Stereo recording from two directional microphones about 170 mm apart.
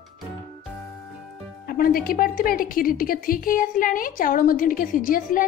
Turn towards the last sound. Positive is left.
turn(degrees=55)  # may be behind; listen again after turning